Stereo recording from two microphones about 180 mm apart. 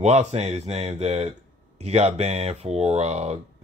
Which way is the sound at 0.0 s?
35° right (ahead or behind).